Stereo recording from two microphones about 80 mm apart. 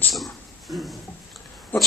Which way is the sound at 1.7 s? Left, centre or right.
Left.